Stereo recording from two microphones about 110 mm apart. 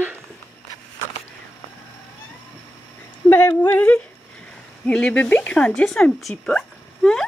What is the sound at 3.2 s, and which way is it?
Speech, 20° left (ahead or behind).